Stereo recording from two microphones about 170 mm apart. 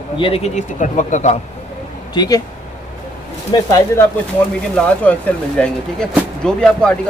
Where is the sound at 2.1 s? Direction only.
25° left (ahead or behind).